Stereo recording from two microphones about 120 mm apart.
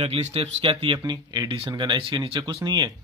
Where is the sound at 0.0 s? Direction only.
55° right (ahead or behind).